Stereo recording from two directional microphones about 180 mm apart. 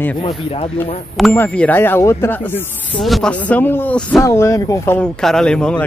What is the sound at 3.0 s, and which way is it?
Speech, centre (ahead or behind).